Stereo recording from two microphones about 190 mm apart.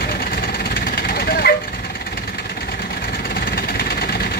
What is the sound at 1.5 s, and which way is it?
Vehicle, 55° left (ahead or behind).